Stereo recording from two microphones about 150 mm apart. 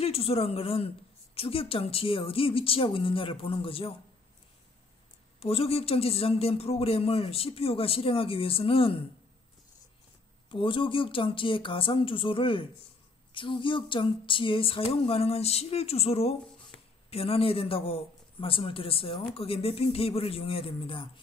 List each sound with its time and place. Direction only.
0.0 s a man's voice: 40° left (ahead or behind)
5.4 s a man's voice: 40° left (ahead or behind)
10.5 s a man's voice: 35° left (ahead or behind)